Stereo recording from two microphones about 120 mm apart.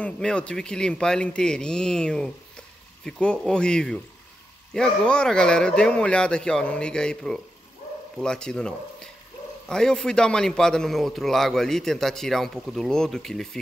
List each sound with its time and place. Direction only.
0.0 s a man's voice: 10° left (ahead or behind)